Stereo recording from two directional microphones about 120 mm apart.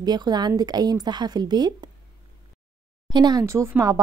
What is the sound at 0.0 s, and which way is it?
Speech, 35° right (ahead or behind).